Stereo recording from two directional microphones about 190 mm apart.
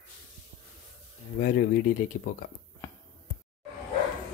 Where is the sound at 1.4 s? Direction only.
50° left (ahead or behind).